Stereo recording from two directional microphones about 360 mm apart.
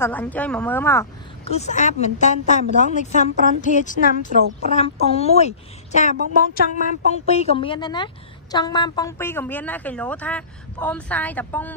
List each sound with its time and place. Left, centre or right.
0.0 s a woman's voice: centre